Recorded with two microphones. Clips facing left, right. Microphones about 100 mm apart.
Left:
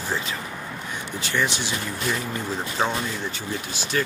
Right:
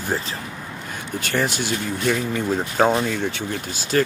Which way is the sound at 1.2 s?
45° right (ahead or behind).